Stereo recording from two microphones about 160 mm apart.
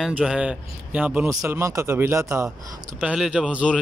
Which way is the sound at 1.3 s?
20° right (ahead or behind).